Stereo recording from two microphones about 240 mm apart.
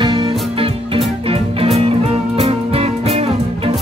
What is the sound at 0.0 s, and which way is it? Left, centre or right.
Music, centre.